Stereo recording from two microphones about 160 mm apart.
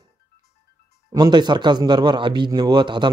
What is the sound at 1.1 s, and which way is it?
Speech, 25° right (ahead or behind).